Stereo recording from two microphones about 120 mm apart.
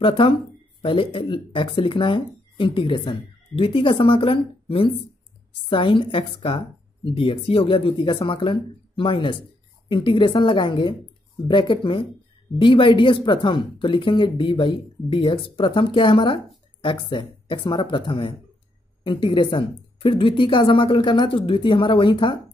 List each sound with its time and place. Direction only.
0.0 s speech: 50° left (ahead or behind)